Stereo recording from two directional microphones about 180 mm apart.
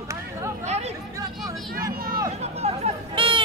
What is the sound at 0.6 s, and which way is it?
Chatter, 35° right (ahead or behind).